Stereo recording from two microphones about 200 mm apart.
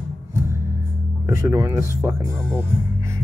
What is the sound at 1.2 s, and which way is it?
Speech, 15° right (ahead or behind).